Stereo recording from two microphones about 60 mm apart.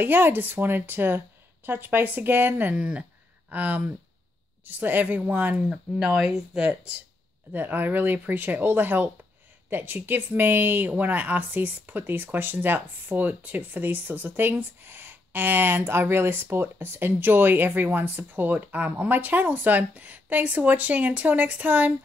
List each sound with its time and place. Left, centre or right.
0.0 s a woman's voice: right
2.7 s a woman's voice: right
5.7 s speech: centre
7.5 s a woman's voice: right